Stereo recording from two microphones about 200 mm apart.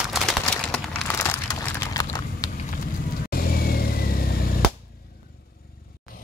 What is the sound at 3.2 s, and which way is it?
Vehicle, 50° left (ahead or behind).